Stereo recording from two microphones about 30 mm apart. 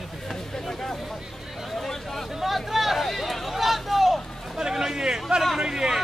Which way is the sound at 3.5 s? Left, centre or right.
Centre.